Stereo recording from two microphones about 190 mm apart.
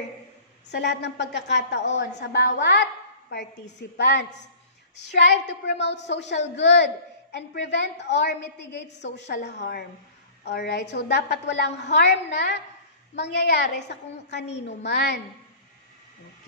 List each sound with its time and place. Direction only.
0.7 s a woman's voice: 65° left (ahead or behind)